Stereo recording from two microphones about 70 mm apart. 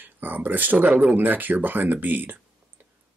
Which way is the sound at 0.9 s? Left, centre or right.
Centre.